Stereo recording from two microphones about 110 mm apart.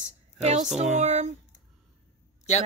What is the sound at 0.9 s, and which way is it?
Speech, 90° right.